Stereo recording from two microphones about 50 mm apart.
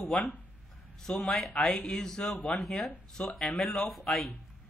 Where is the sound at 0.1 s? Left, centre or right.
Centre.